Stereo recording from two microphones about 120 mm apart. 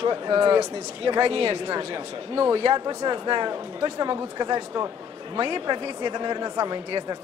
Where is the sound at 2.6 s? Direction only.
35° right (ahead or behind).